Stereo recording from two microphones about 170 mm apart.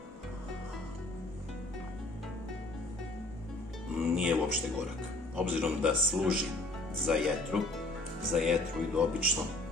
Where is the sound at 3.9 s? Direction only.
5° right (ahead or behind).